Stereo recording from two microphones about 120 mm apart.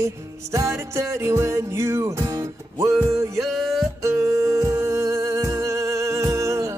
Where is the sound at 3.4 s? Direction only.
Centre (ahead or behind).